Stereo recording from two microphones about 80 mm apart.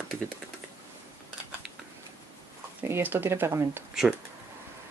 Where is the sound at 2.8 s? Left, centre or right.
Right.